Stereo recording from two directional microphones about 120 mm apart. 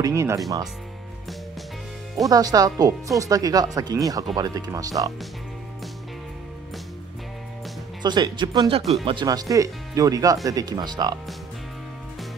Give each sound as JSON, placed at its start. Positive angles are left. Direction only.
{"t": 0.0, "sound": "speech", "side_deg": -25}
{"t": 2.2, "sound": "speech", "side_deg": -30}
{"t": 8.0, "sound": "speech", "side_deg": -35}